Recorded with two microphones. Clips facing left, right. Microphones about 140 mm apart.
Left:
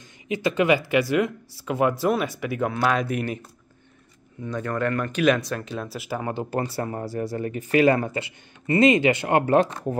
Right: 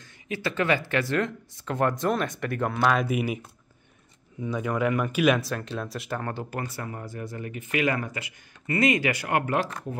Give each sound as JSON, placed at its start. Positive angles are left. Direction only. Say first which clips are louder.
{"t": 0.0, "sound": "speech", "louder": "left 6 dB", "side_deg": 15}
{"t": 6.3, "sound": "speech", "louder": "left 7 dB", "side_deg": 25}